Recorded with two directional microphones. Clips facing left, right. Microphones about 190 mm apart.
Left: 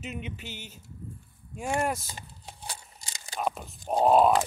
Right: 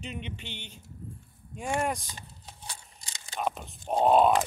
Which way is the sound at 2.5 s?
35° left (ahead or behind).